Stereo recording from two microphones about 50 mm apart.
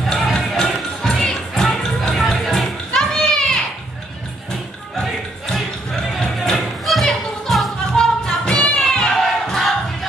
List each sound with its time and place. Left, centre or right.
0.0 s music: centre
6.1 s music: centre
6.8 s a sound: centre
7.1 s music: centre
7.9 s music: centre
9.0 s crowd: centre